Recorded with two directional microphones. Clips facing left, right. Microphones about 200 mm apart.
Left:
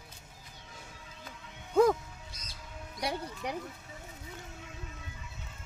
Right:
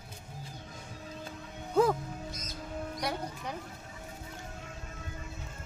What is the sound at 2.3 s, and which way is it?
Music, 30° left (ahead or behind).